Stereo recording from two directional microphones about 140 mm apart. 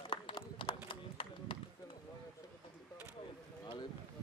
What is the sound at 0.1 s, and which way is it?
Run, 35° left (ahead or behind).